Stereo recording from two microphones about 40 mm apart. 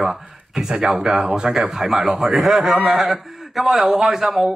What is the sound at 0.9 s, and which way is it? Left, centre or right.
A man's voice, centre.